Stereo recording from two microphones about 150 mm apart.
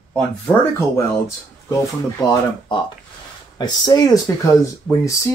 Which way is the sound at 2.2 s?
25° left (ahead or behind).